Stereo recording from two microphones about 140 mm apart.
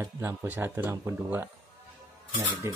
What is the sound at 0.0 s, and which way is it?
Speech, 20° right (ahead or behind).